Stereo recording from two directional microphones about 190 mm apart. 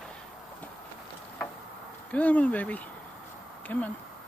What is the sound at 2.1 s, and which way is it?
Speech, 10° left (ahead or behind).